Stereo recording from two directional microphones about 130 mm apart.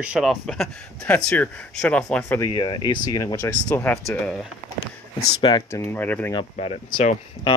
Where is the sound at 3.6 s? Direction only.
10° left (ahead or behind).